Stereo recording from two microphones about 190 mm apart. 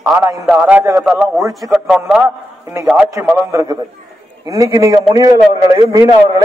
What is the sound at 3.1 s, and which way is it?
A man's voice, 15° right (ahead or behind).